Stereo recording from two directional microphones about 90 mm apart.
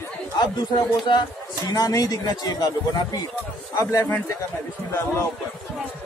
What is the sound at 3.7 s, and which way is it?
Speech, 40° left (ahead or behind).